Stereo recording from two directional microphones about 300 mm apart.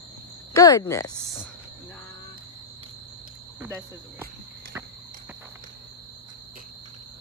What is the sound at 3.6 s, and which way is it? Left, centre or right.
Speech, centre.